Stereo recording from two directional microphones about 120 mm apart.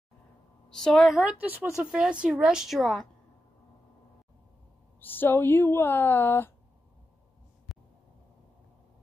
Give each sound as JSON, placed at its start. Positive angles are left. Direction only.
{"t": 0.7, "sound": "a woman's voice", "side_deg": 5}
{"t": 1.2, "sound": "a woman's voice", "side_deg": -15}
{"t": 5.0, "sound": "speech", "side_deg": 15}